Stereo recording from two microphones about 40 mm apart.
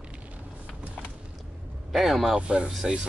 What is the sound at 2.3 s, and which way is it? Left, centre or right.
Speech, right.